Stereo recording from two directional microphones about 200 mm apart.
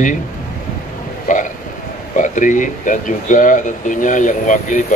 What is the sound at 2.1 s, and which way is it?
Speech, 40° left (ahead or behind).